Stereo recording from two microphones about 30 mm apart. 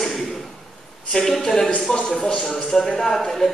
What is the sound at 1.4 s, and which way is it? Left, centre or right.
Speech, centre.